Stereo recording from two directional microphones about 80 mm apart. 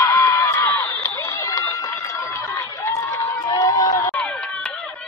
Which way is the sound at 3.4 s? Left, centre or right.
Left.